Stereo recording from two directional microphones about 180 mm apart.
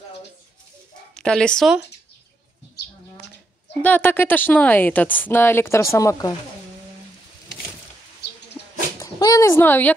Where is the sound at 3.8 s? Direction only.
10° left (ahead or behind).